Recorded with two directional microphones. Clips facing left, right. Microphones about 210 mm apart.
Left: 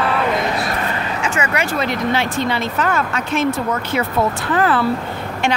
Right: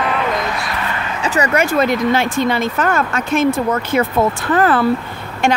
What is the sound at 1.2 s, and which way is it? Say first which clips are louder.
Speech: right 6 dB; 40° right (ahead or behind).